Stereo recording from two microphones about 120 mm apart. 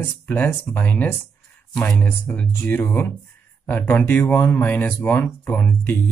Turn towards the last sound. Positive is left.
turn(degrees=10)  # may be behind; listen again after turning